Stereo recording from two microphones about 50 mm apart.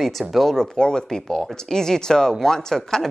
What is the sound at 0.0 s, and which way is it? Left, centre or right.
Speech, centre.